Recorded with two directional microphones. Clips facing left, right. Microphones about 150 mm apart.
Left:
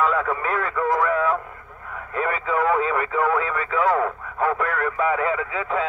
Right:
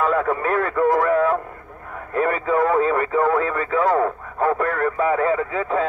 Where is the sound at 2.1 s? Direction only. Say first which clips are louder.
Right 4 dB; 45° right (ahead or behind).